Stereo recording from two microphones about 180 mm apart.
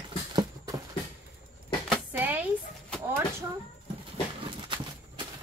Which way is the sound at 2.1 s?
10° right (ahead or behind).